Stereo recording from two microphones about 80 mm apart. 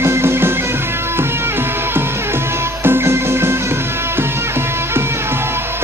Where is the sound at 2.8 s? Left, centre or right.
Right.